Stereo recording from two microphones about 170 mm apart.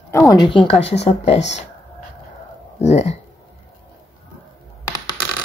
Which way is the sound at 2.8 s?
40° left (ahead or behind).